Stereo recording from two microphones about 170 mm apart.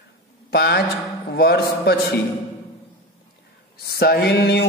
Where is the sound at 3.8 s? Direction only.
65° left (ahead or behind).